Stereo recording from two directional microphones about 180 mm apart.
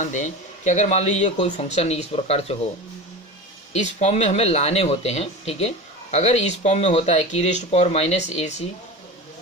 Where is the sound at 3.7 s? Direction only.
35° left (ahead or behind).